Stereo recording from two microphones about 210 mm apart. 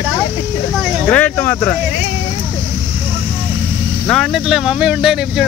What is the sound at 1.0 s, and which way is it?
Speech, 5° left (ahead or behind).